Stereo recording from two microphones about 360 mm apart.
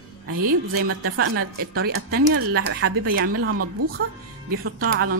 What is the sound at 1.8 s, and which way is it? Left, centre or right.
A woman's voice, right.